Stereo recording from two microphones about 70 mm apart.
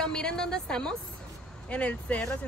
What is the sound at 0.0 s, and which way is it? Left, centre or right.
A woman's voice, centre.